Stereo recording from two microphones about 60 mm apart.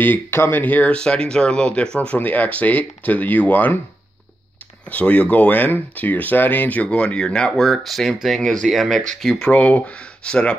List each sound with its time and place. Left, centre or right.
0.0 s speech: left
0.9 s speech: centre
4.8 s speech: left
7.5 s speech: centre
9.5 s speech: left